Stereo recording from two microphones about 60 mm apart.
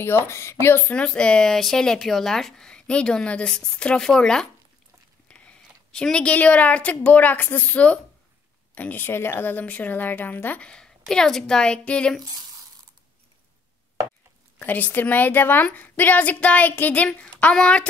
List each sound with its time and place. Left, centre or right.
0.0 s speech: left
0.8 s speech: centre
5.3 s a sound: centre
6.1 s a woman's voice: left
10.6 s speech: centre
14.6 s a woman's voice: left